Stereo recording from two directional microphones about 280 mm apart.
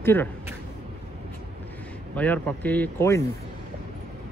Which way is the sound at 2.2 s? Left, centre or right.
Centre.